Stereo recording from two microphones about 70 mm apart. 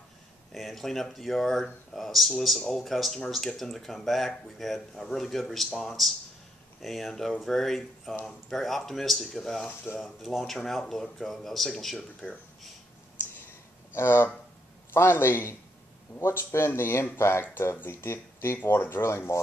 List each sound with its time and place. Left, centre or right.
0.5 s speech: centre
13.9 s speech: left